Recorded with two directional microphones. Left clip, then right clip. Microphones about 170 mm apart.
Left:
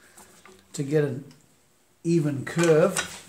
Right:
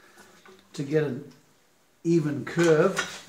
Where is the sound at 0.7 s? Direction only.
55° left (ahead or behind).